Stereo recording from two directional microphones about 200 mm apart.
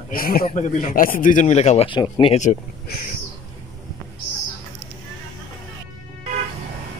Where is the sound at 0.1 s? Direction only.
45° left (ahead or behind); by 2.3 s 25° left (ahead or behind).